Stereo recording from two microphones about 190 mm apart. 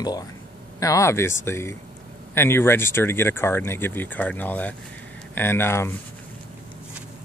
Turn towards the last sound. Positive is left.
turn(degrees=10)  # may be behind; listen again after turning